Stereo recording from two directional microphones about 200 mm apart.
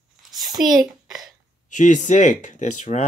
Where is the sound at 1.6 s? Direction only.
40° left (ahead or behind).